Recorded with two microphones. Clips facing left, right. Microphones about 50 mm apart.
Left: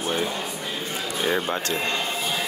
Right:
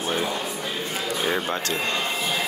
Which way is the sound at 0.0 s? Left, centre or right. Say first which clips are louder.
Even; right.